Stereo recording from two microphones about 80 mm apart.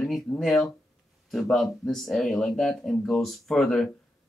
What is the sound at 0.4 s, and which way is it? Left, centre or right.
Speech, centre.